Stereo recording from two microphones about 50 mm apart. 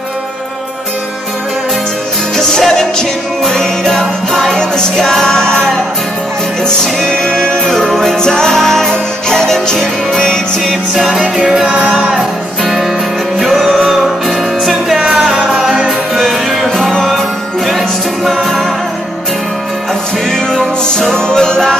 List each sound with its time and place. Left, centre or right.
2.3 s music: centre
6.6 s music: centre
10.6 s music: centre
11.1 s music: centre
11.6 s music: right
12.6 s music: centre
13.6 s music: centre
13.8 s music: centre
16.2 s music: centre
21.1 s music: centre